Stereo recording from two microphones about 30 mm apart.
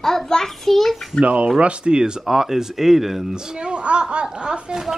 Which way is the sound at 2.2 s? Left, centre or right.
Centre.